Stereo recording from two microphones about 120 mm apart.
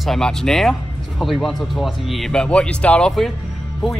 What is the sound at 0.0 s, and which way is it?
Speech, 5° left (ahead or behind).